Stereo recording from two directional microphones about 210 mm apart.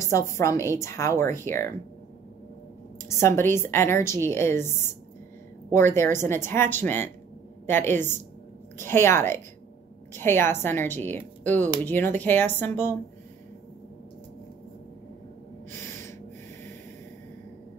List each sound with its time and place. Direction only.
0.0 s a woman's voice: 15° left (ahead or behind)
3.1 s a woman's voice: 15° left (ahead or behind)
7.8 s a woman's voice: 35° right (ahead or behind)
8.8 s a woman's voice: 10° left (ahead or behind)
15.7 s gasp: 10° left (ahead or behind)